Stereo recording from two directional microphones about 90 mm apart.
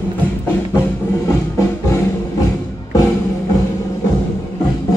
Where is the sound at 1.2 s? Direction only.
30° left (ahead or behind).